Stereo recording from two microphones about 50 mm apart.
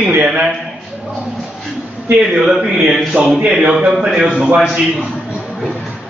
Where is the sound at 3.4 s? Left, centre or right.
Right.